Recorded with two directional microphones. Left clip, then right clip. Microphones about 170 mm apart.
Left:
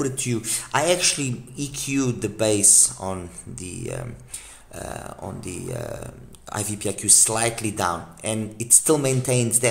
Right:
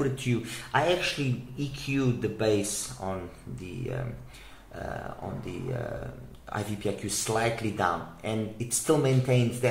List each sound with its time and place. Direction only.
0.0 s speech: 40° left (ahead or behind)
4.7 s speech: 40° left (ahead or behind)